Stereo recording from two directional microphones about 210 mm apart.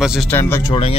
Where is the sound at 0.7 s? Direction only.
25° left (ahead or behind).